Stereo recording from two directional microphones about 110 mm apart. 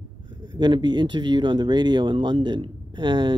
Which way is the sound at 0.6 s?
40° right (ahead or behind).